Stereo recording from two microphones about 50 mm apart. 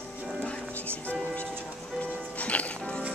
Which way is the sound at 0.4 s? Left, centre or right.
Left.